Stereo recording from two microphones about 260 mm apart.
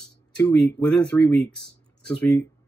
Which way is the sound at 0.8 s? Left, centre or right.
Centre.